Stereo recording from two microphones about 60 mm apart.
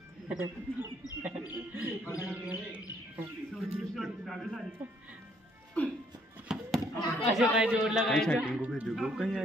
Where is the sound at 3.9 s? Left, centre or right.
Centre.